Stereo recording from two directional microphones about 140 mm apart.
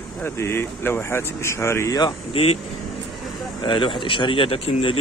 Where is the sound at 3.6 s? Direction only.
35° left (ahead or behind).